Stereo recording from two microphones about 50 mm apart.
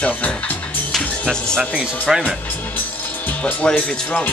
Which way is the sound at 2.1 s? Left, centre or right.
Centre.